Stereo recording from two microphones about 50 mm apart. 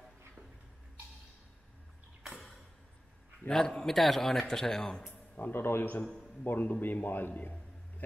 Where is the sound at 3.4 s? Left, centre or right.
Centre.